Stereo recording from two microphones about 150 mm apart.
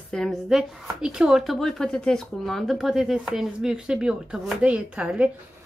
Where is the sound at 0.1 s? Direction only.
Centre (ahead or behind).